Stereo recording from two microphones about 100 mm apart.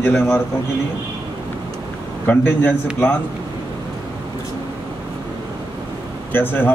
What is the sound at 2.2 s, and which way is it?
Speech, 20° left (ahead or behind).